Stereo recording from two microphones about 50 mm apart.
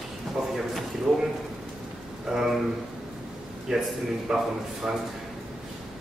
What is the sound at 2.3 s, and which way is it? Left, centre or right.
Speech, centre.